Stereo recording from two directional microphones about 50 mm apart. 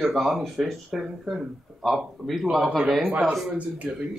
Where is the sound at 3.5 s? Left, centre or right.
Right.